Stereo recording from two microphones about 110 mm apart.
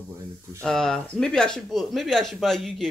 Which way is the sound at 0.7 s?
5° left (ahead or behind).